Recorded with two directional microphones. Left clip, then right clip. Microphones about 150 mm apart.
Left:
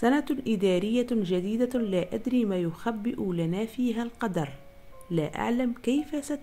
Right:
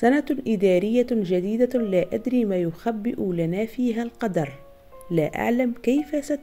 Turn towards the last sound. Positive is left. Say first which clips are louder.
# right 6 dB
turn(degrees=-10)  # may be behind; listen again after turning